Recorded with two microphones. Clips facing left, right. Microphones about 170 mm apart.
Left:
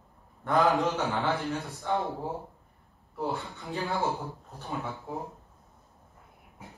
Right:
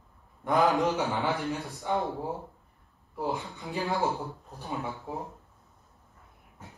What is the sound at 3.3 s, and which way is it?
Speech, 15° right (ahead or behind).